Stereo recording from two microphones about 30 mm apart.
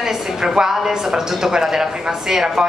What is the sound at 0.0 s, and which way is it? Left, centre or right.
A woman's voice, centre.